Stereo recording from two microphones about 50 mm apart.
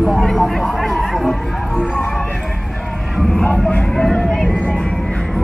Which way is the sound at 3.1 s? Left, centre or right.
Centre.